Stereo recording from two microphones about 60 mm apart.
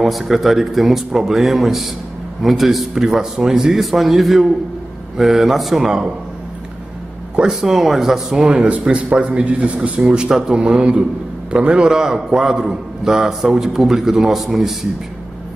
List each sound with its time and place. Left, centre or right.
0.0 s a man's voice: centre
7.3 s a man's voice: centre
8.4 s a man's voice: centre